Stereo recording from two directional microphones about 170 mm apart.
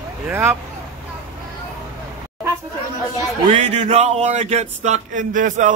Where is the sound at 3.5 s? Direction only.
40° right (ahead or behind).